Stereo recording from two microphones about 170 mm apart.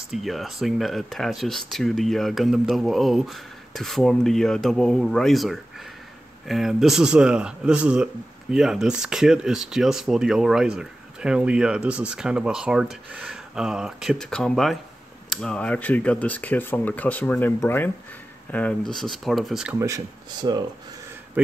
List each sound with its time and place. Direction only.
0.1 s speech: centre (ahead or behind)
19.8 s speech: 20° right (ahead or behind)